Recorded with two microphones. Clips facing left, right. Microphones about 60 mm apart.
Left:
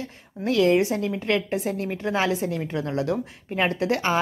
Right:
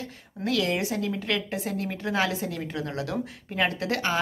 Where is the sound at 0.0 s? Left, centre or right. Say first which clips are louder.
Left 3 dB; left.